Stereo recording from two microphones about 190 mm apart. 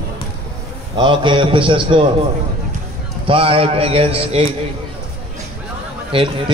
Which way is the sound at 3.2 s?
30° right (ahead or behind).